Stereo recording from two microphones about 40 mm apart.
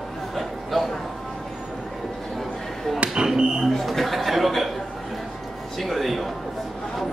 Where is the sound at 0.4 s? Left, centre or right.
Centre.